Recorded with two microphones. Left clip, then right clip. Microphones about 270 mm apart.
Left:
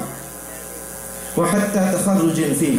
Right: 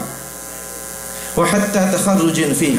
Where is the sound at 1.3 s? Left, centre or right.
Centre.